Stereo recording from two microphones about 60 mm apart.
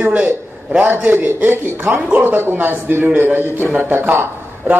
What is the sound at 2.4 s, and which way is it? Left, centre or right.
A man's voice, right.